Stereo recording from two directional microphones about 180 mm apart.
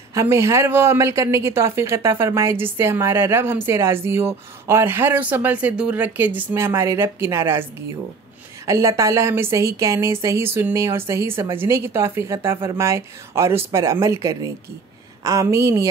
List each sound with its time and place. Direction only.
0.1 s a woman's voice: 15° right (ahead or behind)
8.6 s a woman's voice: 15° right (ahead or behind)